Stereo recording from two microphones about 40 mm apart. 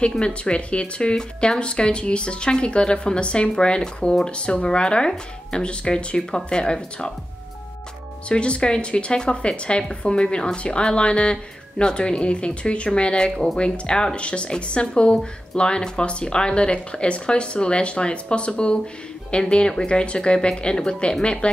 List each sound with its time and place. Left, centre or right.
0.2 s speech: left
8.3 s speech: left